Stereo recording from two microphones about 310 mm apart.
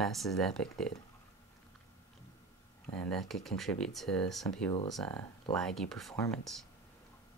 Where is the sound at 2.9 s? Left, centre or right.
Centre.